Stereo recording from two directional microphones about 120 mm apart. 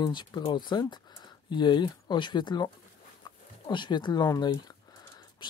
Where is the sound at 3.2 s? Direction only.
40° left (ahead or behind).